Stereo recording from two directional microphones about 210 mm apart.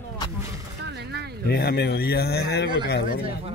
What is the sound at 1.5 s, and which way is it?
Speech, 50° left (ahead or behind).